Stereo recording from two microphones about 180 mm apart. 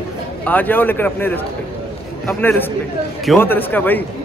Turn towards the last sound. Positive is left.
turn(degrees=10)  # may be behind; listen again after turning